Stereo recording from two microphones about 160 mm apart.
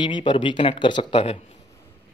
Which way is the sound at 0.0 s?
30° left (ahead or behind).